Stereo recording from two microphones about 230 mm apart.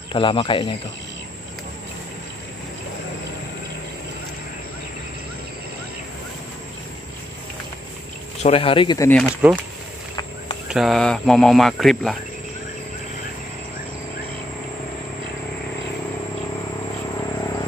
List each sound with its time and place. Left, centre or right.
0.1 s speech: left
8.4 s speech: left; by 9.3 s centre
10.7 s speech: centre
17.4 s cricket: centre